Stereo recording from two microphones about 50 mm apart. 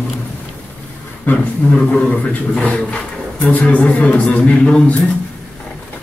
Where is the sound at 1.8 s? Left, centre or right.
Centre.